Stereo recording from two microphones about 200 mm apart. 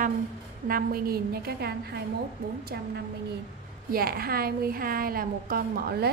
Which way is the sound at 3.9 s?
50° right (ahead or behind).